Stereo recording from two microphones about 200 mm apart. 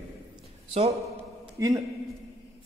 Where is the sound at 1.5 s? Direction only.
15° right (ahead or behind).